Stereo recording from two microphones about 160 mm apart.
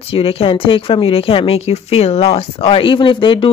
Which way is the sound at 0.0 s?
35° left (ahead or behind).